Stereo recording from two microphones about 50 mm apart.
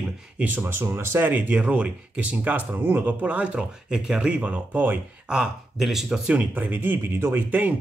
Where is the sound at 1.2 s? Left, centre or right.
Right.